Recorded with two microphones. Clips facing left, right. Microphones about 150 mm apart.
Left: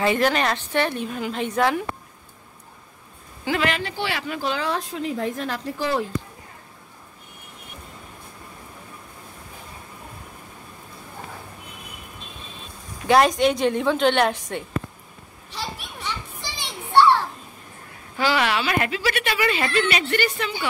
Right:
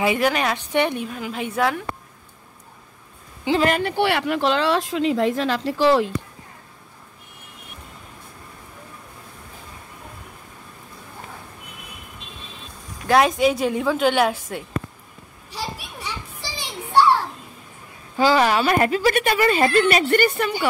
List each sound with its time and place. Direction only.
0.0 s a woman's voice: 10° right (ahead or behind)
1.0 s a woman's voice: centre (ahead or behind)
3.6 s speech: 50° right (ahead or behind); by 6.1 s 90° right
13.0 s a woman's voice: centre (ahead or behind)
15.5 s children playing: 10° right (ahead or behind)
18.2 s a woman's voice: 40° right (ahead or behind)